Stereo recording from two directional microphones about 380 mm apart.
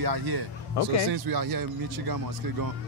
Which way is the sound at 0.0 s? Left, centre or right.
Right.